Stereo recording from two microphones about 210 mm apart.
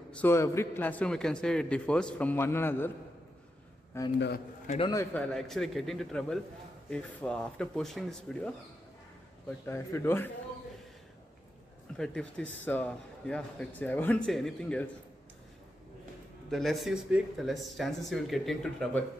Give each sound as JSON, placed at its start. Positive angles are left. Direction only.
{"t": 0.1, "sound": "a man's voice", "side_deg": 10}
{"t": 3.9, "sound": "a man's voice", "side_deg": 10}
{"t": 4.6, "sound": "a man's voice", "side_deg": 25}
{"t": 4.9, "sound": "a man's voice", "side_deg": 5}
{"t": 9.5, "sound": "a man's voice", "side_deg": 10}
{"t": 12.0, "sound": "a man's voice", "side_deg": 5}
{"t": 16.4, "sound": "a man's voice", "side_deg": 0}